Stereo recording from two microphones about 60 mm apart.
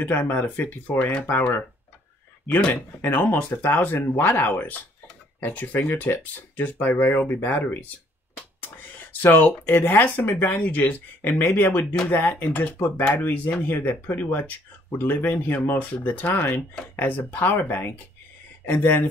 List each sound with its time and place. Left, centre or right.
0.0 s speech: left
3.0 s speech: left
9.2 s speech: left